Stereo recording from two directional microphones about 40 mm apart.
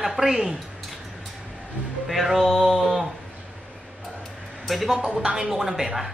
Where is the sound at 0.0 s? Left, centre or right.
Centre.